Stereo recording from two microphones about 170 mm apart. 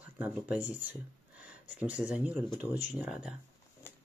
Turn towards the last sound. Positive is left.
turn(degrees=-5)  # may be behind; listen again after turning